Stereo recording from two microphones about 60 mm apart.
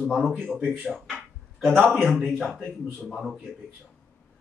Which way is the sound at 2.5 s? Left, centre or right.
Centre.